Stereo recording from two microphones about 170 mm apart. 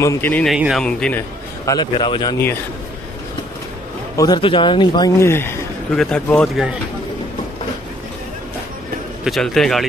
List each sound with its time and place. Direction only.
0.0 s speech: 15° left (ahead or behind)
0.6 s speech: 5° right (ahead or behind)
0.8 s speech: 5° left (ahead or behind)
1.7 s a man's voice: 25° left (ahead or behind)
4.2 s a man's voice: 25° left (ahead or behind); by 6.8 s 5° right (ahead or behind)
9.2 s speech: centre (ahead or behind)